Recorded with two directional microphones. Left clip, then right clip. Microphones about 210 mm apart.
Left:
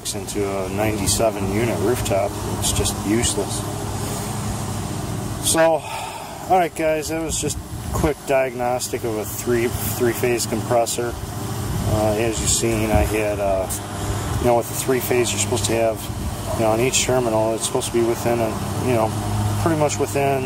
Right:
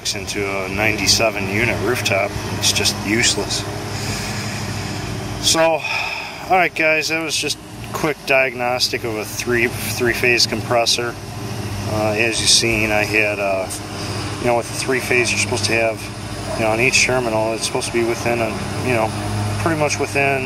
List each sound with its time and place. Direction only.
0.5 s speech: 15° left (ahead or behind)
5.7 s speech: 20° left (ahead or behind)